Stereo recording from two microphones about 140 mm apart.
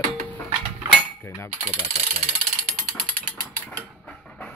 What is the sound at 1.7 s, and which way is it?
Speech, 50° right (ahead or behind).